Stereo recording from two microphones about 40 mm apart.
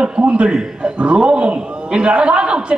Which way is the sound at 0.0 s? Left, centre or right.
Right.